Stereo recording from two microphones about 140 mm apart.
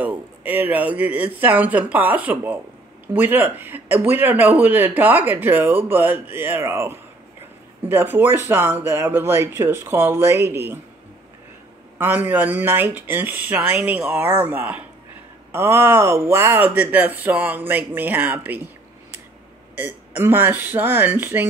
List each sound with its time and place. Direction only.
0.0 s speech: 10° right (ahead or behind)
12.0 s speech: 15° right (ahead or behind)
19.8 s speech: 15° right (ahead or behind)